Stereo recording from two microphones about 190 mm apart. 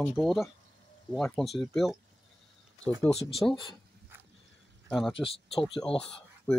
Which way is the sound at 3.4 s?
5° left (ahead or behind).